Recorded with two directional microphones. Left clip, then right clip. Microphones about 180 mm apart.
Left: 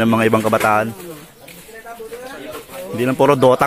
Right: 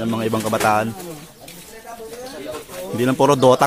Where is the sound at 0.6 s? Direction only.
5° left (ahead or behind).